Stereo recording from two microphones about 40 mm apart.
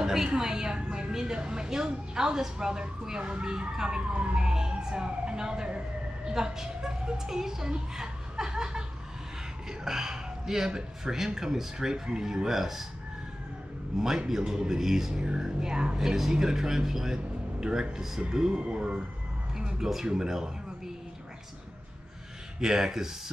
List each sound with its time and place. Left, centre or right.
0.0 s a sound: centre
0.3 s a woman's voice: centre
13.9 s a man's voice: centre
16.0 s a man's voice: centre
19.5 s music: centre
22.6 s a man's voice: centre